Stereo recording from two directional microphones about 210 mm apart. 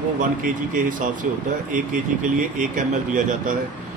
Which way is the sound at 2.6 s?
40° right (ahead or behind).